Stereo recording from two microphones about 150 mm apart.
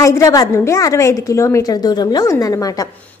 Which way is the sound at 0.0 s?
25° left (ahead or behind).